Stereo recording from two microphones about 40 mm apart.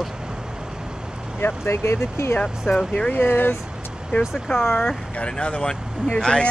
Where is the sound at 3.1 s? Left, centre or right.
Left.